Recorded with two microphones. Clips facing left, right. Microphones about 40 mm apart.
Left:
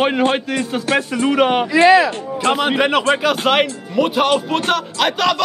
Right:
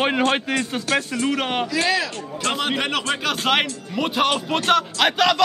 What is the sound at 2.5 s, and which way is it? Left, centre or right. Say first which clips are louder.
Speech: left 7 dB; centre.